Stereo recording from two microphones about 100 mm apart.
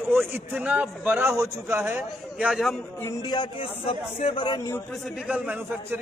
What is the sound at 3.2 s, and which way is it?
A man's voice, 45° left (ahead or behind).